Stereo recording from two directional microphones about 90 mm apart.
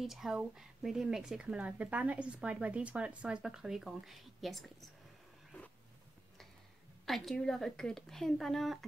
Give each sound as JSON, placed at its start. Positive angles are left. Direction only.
{"t": 0.0, "sound": "speech", "side_deg": -5}
{"t": 5.5, "sound": "a sound", "side_deg": 20}
{"t": 7.1, "sound": "speech", "side_deg": 0}